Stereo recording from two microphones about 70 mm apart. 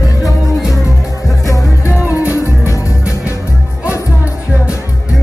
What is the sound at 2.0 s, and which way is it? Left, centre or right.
Music, right.